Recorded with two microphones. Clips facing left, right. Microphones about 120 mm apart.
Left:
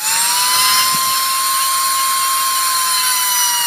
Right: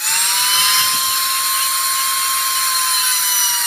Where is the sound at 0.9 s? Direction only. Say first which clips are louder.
Left 5 dB; 60° left (ahead or behind).